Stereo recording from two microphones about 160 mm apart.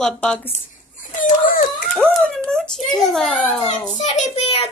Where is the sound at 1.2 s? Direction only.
60° left (ahead or behind).